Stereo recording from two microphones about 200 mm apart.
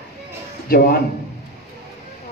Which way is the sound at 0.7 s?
50° left (ahead or behind).